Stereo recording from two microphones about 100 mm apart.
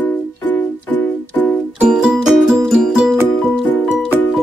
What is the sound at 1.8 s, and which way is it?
Music, 5° right (ahead or behind).